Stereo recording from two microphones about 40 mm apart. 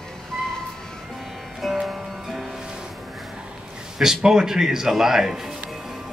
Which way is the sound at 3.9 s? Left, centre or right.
Centre.